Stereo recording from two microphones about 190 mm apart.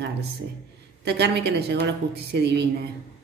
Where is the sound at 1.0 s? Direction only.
60° right (ahead or behind).